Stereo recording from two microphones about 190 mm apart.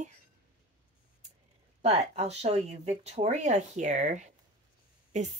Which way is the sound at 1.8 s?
35° right (ahead or behind).